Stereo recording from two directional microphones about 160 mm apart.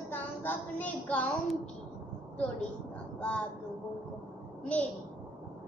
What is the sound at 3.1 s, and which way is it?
Speech, 5° left (ahead or behind).